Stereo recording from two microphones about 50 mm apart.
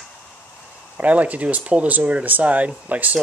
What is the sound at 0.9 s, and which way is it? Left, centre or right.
Speech, right.